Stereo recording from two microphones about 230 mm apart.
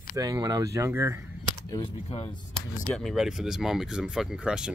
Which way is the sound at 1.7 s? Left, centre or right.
Left.